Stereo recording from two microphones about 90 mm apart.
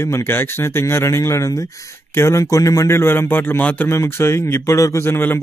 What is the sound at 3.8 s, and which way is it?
Speech, 30° left (ahead or behind).